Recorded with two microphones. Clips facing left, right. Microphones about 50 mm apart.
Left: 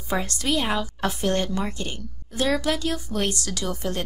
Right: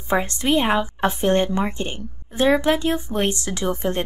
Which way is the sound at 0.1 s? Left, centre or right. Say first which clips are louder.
Right 5 dB; right.